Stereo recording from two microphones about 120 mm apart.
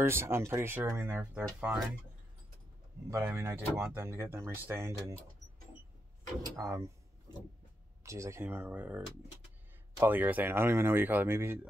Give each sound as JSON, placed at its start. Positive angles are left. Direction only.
{"t": 0.0, "sound": "speech", "side_deg": -20}
{"t": 3.1, "sound": "speech", "side_deg": -20}
{"t": 6.6, "sound": "speech", "side_deg": -25}
{"t": 8.0, "sound": "speech", "side_deg": -25}
{"t": 10.0, "sound": "speech", "side_deg": -15}